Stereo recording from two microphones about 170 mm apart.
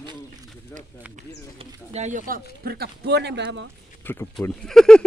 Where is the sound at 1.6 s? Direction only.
40° right (ahead or behind).